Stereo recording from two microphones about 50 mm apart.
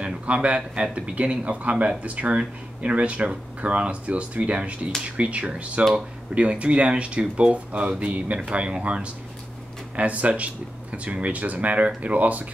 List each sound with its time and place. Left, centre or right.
0.0 s a man's voice: right